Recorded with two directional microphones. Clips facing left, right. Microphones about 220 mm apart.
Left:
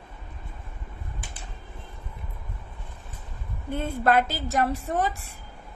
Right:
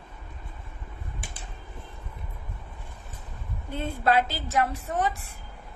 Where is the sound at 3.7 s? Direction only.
50° left (ahead or behind).